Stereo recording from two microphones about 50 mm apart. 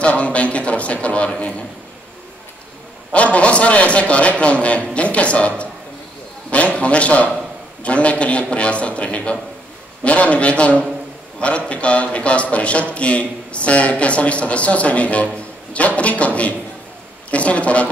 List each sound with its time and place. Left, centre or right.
0.0 s a man's voice: left
3.1 s a man's voice: left
6.5 s a man's voice: left